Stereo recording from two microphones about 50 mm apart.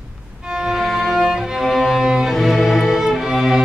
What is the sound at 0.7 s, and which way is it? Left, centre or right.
Music, centre.